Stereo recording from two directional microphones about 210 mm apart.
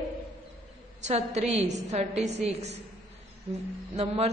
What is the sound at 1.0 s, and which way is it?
A woman's voice, 30° right (ahead or behind).